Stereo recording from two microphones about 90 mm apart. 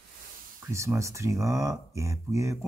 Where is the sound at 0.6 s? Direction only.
35° right (ahead or behind).